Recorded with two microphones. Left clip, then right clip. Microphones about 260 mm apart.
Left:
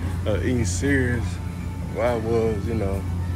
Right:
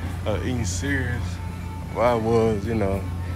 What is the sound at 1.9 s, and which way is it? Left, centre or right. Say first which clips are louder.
Speech: right 3 dB; right.